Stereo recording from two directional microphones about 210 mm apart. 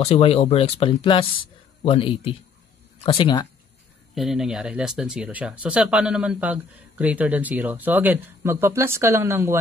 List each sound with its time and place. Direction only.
0.0 s speech: 30° left (ahead or behind)
4.1 s speech: centre (ahead or behind)